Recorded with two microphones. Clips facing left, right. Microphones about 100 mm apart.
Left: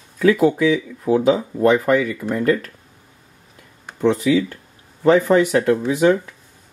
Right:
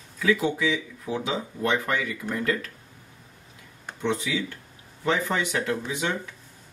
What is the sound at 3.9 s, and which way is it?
Speech, 40° left (ahead or behind).